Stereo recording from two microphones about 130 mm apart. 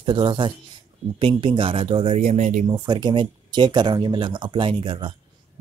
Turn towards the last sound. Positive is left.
turn(degrees=-40)  # may be behind; listen again after turning